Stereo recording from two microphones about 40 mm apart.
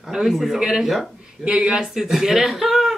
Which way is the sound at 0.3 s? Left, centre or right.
Centre.